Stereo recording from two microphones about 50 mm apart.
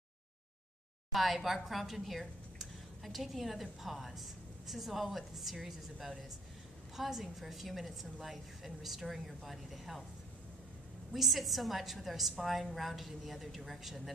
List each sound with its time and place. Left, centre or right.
1.1 s a woman's voice: centre
11.1 s a woman's voice: centre